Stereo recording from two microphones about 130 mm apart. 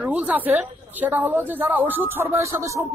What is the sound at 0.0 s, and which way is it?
Speech, 10° right (ahead or behind).